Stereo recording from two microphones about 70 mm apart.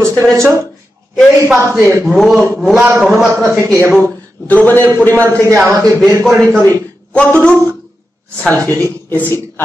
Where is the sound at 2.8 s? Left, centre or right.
Right.